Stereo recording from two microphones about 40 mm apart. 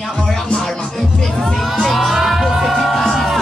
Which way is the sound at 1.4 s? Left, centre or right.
Centre.